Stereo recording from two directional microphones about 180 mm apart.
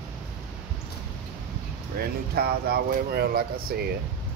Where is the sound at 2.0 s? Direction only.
60° right (ahead or behind).